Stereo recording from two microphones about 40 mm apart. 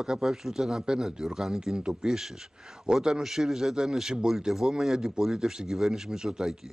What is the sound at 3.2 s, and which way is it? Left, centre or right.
Speech, centre.